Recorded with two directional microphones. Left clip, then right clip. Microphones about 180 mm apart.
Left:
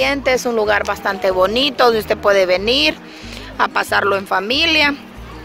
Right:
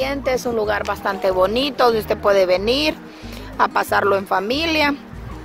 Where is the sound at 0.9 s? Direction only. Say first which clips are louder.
Left 2 dB; 5° right (ahead or behind).